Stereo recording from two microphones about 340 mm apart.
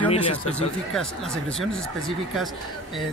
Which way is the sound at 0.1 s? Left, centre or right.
Centre.